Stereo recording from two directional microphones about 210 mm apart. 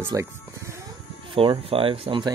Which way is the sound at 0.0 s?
15° right (ahead or behind).